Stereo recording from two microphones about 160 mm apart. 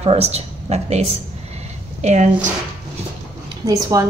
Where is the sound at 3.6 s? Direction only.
20° right (ahead or behind).